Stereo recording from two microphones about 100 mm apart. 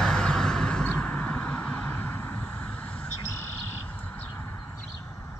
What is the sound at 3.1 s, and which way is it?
Cricket, 30° left (ahead or behind).